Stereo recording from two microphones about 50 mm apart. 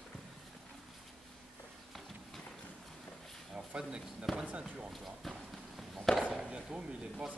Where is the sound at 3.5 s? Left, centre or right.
Right.